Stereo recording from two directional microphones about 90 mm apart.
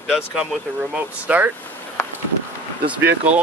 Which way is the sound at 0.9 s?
15° right (ahead or behind).